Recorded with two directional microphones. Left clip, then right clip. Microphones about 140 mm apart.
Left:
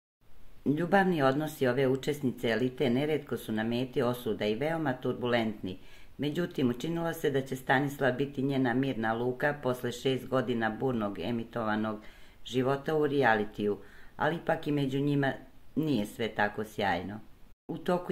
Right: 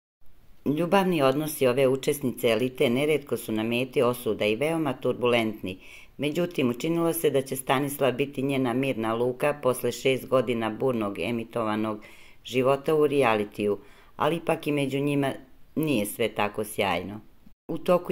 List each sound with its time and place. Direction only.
0.7 s speech: 10° right (ahead or behind)